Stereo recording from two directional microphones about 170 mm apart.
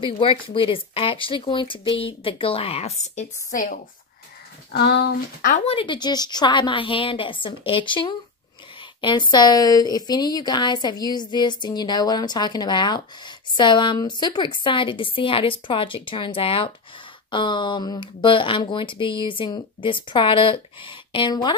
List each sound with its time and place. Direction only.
0.0 s speech: 30° left (ahead or behind)
4.7 s speech: 80° left
5.5 s a woman's voice: 30° left (ahead or behind)